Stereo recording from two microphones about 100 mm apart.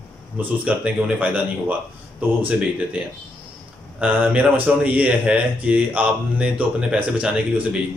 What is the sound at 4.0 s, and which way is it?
Speech, 15° right (ahead or behind).